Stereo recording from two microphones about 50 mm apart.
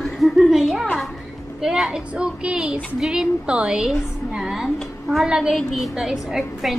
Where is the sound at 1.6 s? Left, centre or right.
Centre.